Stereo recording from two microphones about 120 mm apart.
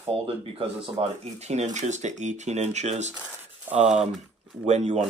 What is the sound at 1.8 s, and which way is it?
Speech, 80° right.